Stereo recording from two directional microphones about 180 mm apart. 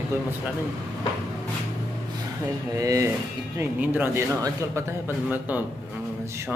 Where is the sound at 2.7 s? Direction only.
20° right (ahead or behind).